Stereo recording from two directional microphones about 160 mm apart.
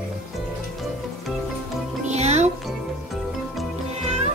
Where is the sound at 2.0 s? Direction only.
45° right (ahead or behind).